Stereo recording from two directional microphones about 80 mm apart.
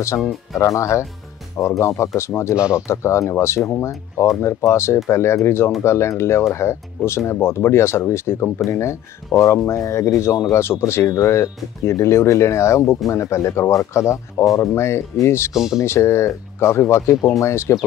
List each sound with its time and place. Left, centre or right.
0.1 s speech: left
0.6 s speech: left
15.5 s speech: centre
15.8 s speech: left